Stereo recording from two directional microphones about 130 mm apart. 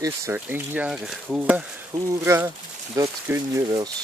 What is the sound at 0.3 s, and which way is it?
Speech, 15° right (ahead or behind).